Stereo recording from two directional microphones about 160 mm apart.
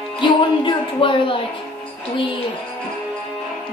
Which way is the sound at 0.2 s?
30° left (ahead or behind).